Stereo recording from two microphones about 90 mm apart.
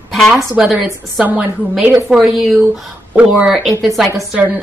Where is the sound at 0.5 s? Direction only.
10° right (ahead or behind).